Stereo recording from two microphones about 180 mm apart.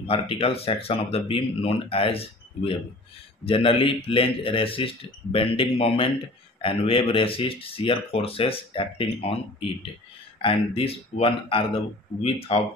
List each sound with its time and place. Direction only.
0.0 s speech: 30° left (ahead or behind)